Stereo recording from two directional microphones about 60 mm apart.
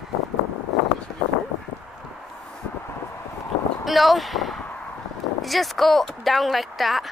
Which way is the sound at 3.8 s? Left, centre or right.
Centre.